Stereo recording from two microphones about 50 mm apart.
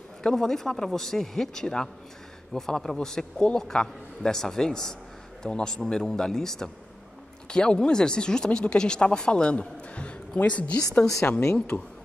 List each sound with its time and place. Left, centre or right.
0.2 s a man's voice: centre; by 10.8 s left
11.2 s a woman's voice: left